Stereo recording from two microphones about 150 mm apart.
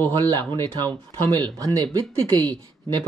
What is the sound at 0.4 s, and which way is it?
Speech, 30° right (ahead or behind).